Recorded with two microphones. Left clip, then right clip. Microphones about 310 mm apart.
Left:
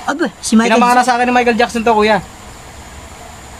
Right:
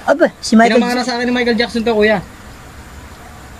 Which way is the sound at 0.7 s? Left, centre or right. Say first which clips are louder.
Left 4 dB; left.